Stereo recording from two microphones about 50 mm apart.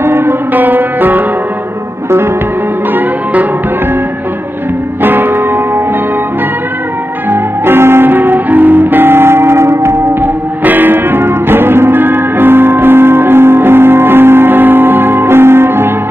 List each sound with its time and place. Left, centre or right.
0.0 s music: right
0.5 s music: right
5.0 s music: right
7.2 s music: right
10.2 s music: right